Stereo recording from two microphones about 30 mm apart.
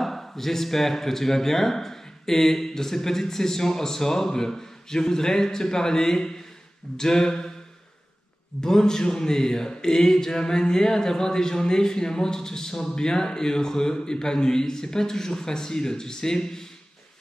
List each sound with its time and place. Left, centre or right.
0.0 s a man's voice: centre
8.5 s a man's voice: centre